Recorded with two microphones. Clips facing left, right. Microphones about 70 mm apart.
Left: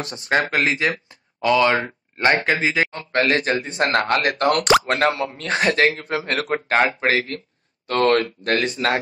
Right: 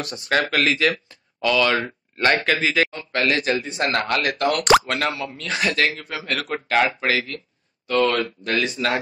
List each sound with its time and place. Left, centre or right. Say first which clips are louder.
0.0 s speech: left 1 dB; left
2.9 s speech: left 3 dB; left
7.8 s speech: left 2 dB; left